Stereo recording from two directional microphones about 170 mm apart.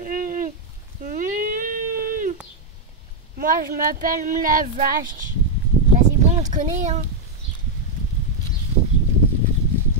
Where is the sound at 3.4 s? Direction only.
55° right (ahead or behind).